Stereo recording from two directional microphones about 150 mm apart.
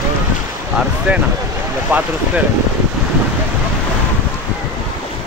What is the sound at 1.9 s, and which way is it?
Speech, 10° right (ahead or behind).